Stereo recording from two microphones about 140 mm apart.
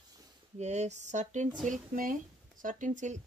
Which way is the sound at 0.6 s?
55° right (ahead or behind).